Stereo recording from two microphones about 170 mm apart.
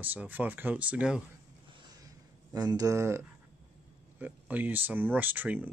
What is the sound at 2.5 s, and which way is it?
Speech, 20° right (ahead or behind).